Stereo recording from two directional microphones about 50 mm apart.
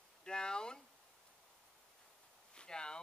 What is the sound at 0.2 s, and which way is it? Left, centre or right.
Speech, centre.